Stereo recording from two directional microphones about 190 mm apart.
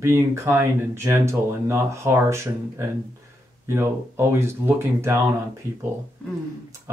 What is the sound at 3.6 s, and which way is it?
Speech, 15° right (ahead or behind).